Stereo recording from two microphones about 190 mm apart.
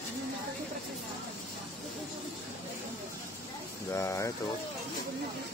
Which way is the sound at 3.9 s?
15° left (ahead or behind).